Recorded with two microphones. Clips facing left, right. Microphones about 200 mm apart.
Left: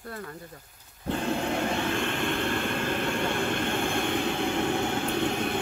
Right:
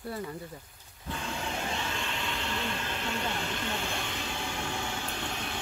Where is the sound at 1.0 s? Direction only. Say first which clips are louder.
Left 9 dB; 55° left (ahead or behind).